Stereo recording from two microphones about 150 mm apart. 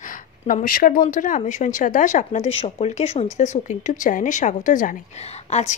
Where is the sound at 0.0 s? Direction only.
60° left (ahead or behind).